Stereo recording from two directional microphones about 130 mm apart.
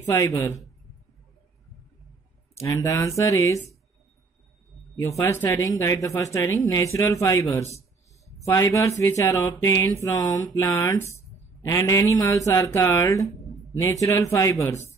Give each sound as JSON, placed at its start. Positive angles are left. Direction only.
{"t": 0.2, "sound": "mantra", "side_deg": 25}
{"t": 2.6, "sound": "mantra", "side_deg": 25}
{"t": 5.0, "sound": "mantra", "side_deg": 20}
{"t": 8.5, "sound": "mantra", "side_deg": 25}